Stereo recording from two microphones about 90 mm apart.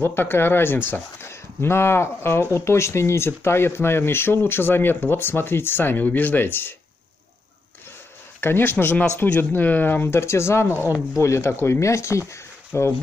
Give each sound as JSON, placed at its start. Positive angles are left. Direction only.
{"t": 0.0, "sound": "speech", "side_deg": 25}
{"t": 8.4, "sound": "speech", "side_deg": 25}